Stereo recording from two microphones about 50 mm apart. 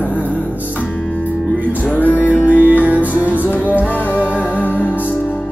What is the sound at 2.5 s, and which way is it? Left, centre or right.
Music, right.